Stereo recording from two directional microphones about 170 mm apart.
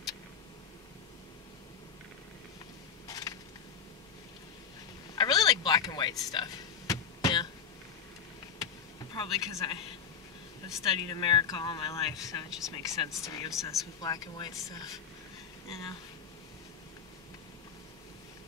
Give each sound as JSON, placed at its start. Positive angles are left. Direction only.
{"t": 3.1, "sound": "a sound", "side_deg": 20}
{"t": 5.1, "sound": "a sound", "side_deg": 25}
{"t": 9.1, "sound": "speech", "side_deg": 25}
{"t": 10.8, "sound": "speech", "side_deg": 25}
{"t": 12.4, "sound": "speech", "side_deg": 0}
{"t": 12.7, "sound": "speech", "side_deg": 20}